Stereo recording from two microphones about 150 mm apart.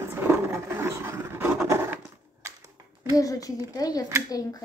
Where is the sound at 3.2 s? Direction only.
25° left (ahead or behind).